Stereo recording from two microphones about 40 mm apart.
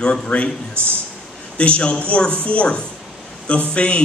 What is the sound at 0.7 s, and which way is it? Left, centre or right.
Speech, right.